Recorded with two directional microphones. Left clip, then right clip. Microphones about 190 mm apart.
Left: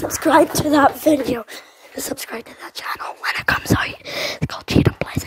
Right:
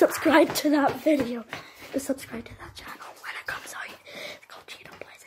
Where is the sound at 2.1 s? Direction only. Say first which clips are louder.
Left 6 dB; 40° left (ahead or behind).